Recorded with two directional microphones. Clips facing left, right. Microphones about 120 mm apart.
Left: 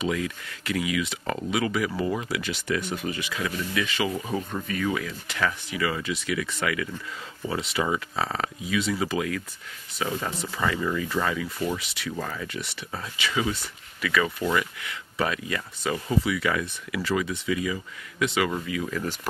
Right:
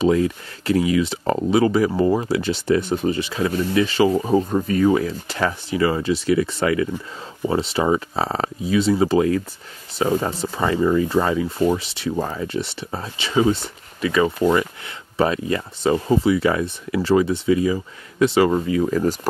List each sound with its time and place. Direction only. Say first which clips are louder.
0.0 s speech: right 10 dB; 35° right (ahead or behind)